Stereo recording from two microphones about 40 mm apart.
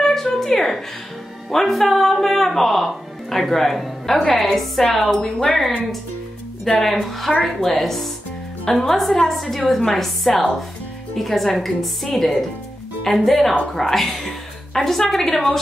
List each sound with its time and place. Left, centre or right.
0.0 s music: centre
1.5 s a woman's voice: centre
5.0 s a woman's voice: centre
6.8 s a woman's voice: centre